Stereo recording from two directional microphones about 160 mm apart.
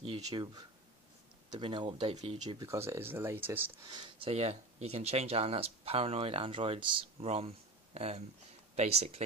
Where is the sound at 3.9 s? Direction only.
35° right (ahead or behind).